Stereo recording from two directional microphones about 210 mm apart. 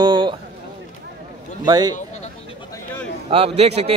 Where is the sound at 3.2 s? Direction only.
30° right (ahead or behind).